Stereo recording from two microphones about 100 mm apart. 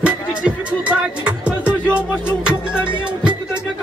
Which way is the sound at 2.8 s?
10° right (ahead or behind).